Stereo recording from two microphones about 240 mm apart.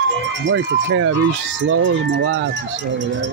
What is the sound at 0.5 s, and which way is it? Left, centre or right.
Speech, right.